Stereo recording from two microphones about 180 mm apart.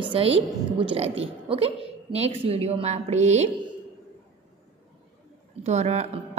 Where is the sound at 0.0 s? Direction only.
30° right (ahead or behind).